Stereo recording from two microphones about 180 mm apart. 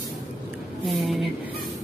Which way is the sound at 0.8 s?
Centre (ahead or behind).